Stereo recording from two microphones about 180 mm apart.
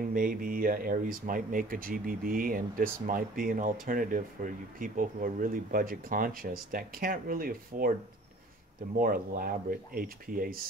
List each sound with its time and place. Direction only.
0.1 s speech: 50° right (ahead or behind)
8.9 s speech: 55° right (ahead or behind)